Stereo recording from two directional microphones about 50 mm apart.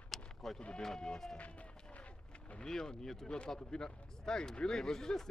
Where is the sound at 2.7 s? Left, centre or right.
Centre.